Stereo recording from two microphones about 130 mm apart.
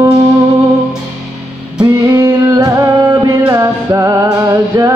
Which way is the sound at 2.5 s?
30° right (ahead or behind).